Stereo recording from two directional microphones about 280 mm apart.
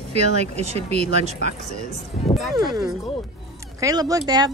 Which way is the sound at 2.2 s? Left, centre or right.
Left.